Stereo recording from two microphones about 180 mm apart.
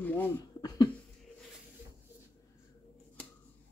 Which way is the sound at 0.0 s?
10° left (ahead or behind).